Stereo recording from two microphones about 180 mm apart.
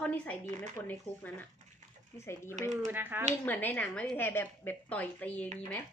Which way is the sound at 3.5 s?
10° left (ahead or behind).